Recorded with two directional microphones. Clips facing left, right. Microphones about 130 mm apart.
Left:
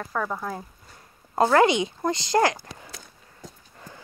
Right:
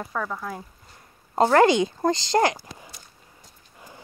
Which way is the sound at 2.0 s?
35° right (ahead or behind).